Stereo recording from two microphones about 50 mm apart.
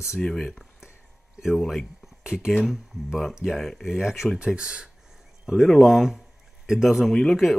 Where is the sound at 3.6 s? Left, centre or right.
Centre.